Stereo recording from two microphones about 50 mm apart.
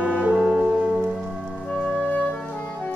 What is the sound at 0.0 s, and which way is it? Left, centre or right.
Music, right.